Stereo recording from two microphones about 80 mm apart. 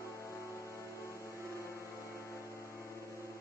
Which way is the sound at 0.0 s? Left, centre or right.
Left.